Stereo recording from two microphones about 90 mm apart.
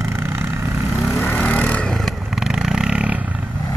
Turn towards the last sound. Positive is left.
turn(degrees=-10)  # may be behind; listen again after turning